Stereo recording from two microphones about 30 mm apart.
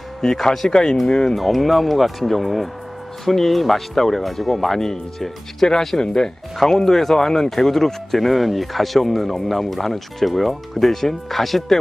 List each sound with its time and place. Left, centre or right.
0.2 s speech: centre
1.3 s speech: centre